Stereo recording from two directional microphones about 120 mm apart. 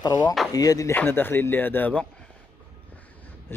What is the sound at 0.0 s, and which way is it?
Speech, 35° left (ahead or behind).